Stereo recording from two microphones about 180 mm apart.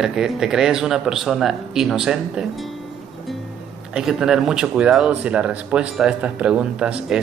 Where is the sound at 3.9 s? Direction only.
5° right (ahead or behind).